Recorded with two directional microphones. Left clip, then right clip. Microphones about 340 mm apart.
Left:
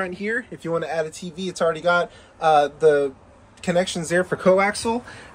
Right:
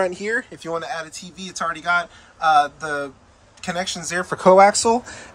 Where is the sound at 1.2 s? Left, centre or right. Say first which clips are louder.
Left 4 dB; centre.